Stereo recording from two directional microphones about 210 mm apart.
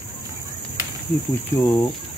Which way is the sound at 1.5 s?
15° left (ahead or behind).